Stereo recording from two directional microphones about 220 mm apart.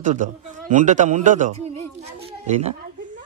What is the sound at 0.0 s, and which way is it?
A man's voice, 35° right (ahead or behind).